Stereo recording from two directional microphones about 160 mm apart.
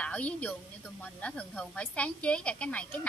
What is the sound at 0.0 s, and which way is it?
A woman's voice, 10° left (ahead or behind).